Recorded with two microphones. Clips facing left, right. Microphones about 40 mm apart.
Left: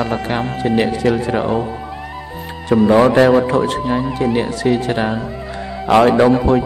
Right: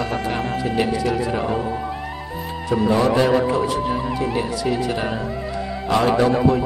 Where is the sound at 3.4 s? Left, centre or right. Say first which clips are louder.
Left 3 dB; left.